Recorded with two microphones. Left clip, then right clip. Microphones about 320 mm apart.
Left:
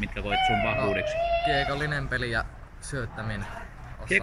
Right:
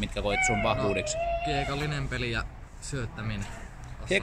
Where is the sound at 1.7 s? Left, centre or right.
Centre.